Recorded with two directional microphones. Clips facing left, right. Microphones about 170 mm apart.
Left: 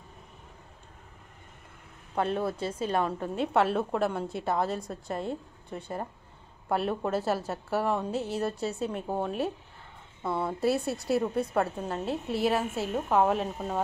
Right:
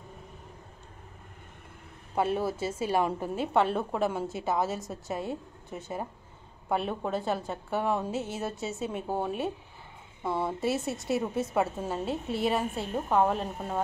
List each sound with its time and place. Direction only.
2.1 s a woman's voice: 5° right (ahead or behind)